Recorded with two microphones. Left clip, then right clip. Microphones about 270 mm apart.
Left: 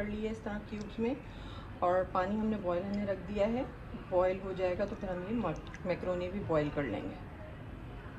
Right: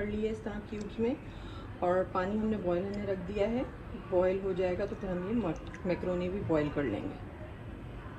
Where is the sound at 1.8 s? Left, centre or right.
Left.